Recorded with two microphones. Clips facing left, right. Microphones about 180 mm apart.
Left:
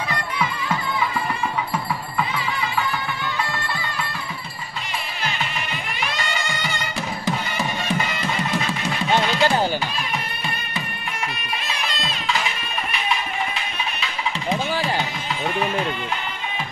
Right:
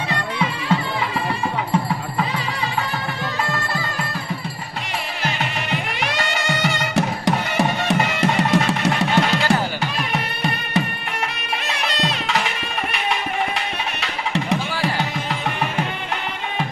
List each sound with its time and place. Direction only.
0.1 s music: 30° right (ahead or behind)
5.2 s music: 65° right (ahead or behind)